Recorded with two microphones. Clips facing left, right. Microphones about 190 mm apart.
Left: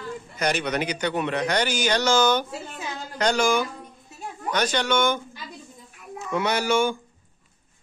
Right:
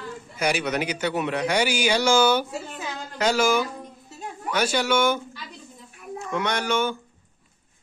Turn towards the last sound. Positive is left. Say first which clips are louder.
# left 2 dB
turn(degrees=10)  # may be behind; listen again after turning